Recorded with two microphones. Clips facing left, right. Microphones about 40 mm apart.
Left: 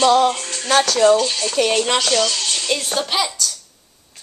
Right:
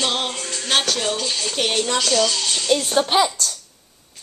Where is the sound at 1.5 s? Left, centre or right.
Left.